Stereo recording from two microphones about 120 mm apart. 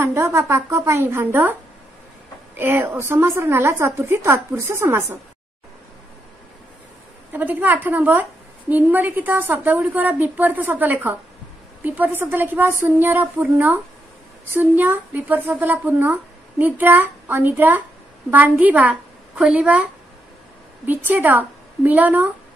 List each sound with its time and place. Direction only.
0.0 s a woman's voice: 20° right (ahead or behind)
7.3 s a woman's voice: 15° right (ahead or behind)